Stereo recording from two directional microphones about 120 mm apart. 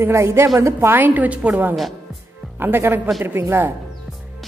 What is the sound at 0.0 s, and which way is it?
A woman's voice, 20° right (ahead or behind).